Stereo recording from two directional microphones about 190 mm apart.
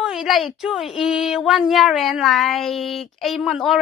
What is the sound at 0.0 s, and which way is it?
A woman's voice, centre (ahead or behind).